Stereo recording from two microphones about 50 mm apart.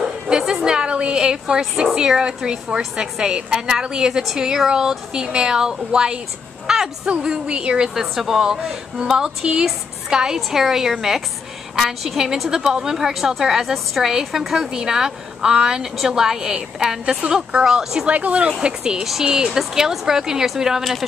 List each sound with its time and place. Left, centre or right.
0.3 s a woman's voice: centre
6.7 s a sound: centre
7.2 s a woman's voice: centre
7.9 s a woman's voice: centre
18.0 s a woman's voice: right
18.6 s a woman's voice: centre